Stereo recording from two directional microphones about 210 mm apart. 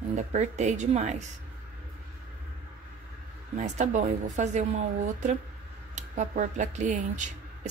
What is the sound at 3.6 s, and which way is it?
A woman's voice, 35° right (ahead or behind).